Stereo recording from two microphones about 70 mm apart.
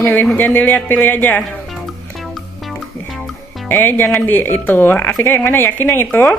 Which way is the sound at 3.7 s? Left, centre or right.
Left.